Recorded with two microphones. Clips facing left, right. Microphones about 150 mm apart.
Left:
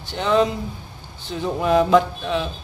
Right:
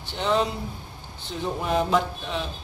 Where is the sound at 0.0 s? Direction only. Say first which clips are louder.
Left 5 dB; 90° left.